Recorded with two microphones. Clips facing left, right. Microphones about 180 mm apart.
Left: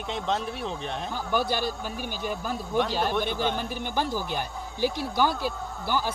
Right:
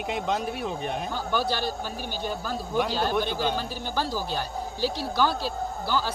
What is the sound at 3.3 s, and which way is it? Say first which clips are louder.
A man's voice: even; 20° left (ahead or behind).